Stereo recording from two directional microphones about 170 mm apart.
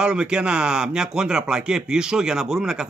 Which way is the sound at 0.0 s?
5° right (ahead or behind).